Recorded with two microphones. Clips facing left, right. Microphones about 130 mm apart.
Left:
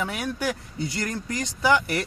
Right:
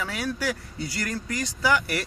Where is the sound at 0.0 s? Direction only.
20° left (ahead or behind).